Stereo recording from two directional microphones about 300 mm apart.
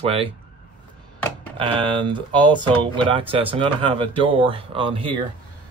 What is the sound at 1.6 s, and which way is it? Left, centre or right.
Speech, centre.